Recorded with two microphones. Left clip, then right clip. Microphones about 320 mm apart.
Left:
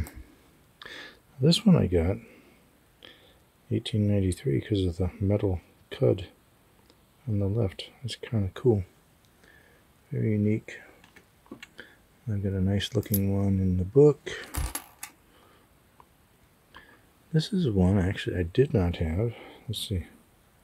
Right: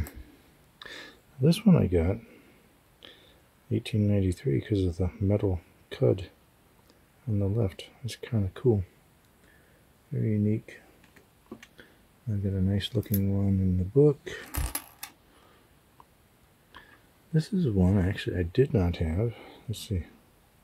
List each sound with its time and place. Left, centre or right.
0.7 s a sound: centre
3.0 s burping: centre
3.7 s speech: centre
10.5 s speech: left
12.3 s speech: centre
16.7 s a sound: centre
17.3 s speech: centre